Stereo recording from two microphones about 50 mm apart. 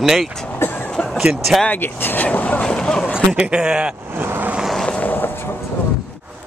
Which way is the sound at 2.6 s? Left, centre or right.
Centre.